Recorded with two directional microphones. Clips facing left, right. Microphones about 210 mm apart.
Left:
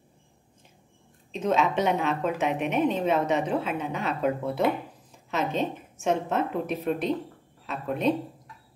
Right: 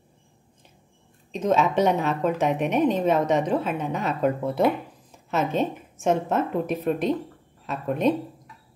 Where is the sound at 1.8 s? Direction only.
40° right (ahead or behind).